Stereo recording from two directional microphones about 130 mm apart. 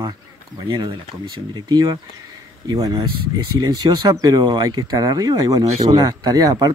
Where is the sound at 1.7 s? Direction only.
30° right (ahead or behind).